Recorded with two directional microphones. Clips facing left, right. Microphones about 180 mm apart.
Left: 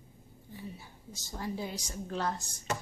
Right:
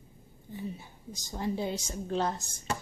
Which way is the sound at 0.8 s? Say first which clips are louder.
Right 4 dB; 15° right (ahead or behind).